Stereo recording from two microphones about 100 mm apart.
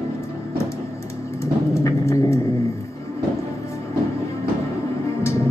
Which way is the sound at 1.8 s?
30° left (ahead or behind).